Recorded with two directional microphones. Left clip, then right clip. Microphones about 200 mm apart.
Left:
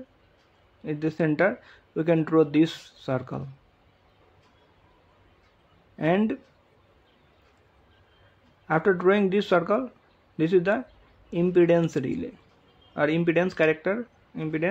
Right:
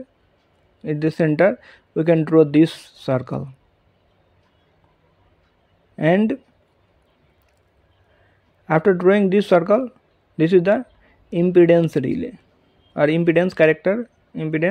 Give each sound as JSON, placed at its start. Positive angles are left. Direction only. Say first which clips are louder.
{"t": 0.8, "sound": "speech", "louder": "right 6 dB", "side_deg": -35}
{"t": 5.9, "sound": "speech", "louder": "right 7 dB", "side_deg": -35}
{"t": 8.6, "sound": "speech", "louder": "right 6 dB", "side_deg": -35}